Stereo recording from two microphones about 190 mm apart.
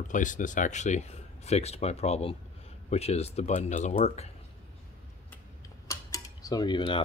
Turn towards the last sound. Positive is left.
turn(degrees=25)  # may be behind; listen again after turning